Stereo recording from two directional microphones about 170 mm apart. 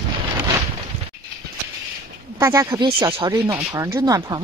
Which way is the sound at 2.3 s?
15° right (ahead or behind).